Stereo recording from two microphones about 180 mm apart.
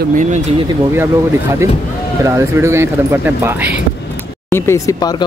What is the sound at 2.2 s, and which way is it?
Speech, 15° right (ahead or behind).